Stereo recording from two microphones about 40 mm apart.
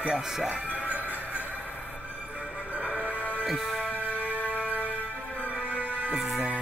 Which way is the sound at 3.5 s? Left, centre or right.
Centre.